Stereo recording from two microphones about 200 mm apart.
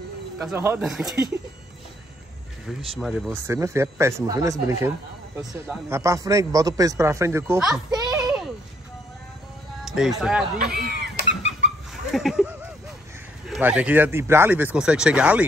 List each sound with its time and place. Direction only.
0.4 s speech: 5° right (ahead or behind)
2.6 s speech: centre (ahead or behind)
3.3 s a man's voice: 15° right (ahead or behind)
7.7 s music: 20° right (ahead or behind)
9.8 s speech: centre (ahead or behind)
10.6 s speech: 50° right (ahead or behind)
11.9 s a sound: centre (ahead or behind)
13.5 s a man's voice: 5° right (ahead or behind)